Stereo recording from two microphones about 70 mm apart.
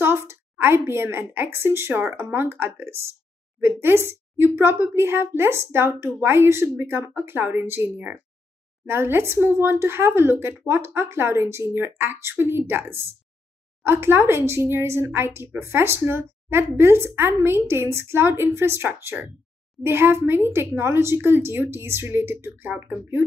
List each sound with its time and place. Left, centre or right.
0.0 s speech: right